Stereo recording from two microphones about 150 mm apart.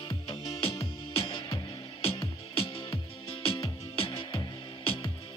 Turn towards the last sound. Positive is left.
turn(degrees=40)  # may be behind; listen again after turning